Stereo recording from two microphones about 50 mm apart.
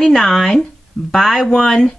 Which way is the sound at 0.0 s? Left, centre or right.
Centre.